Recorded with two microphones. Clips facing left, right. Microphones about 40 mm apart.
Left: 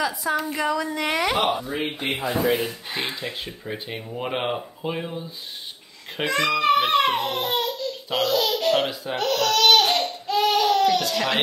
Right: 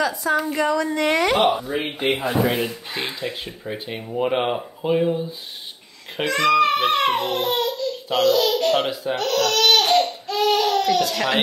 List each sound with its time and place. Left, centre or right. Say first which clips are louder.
0.0 s a child's voice: right 3 dB; centre
2.0 s a child's voice: right 6 dB; right
6.3 s a child's voice: right 2 dB; centre
9.1 s baby cry: right 1 dB; centre
10.2 s crying: even; centre